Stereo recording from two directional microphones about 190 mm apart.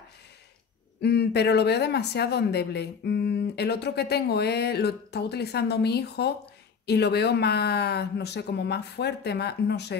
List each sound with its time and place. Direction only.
1.0 s speech: 60° left (ahead or behind)